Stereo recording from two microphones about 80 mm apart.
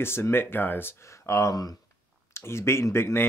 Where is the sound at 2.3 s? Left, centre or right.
Left.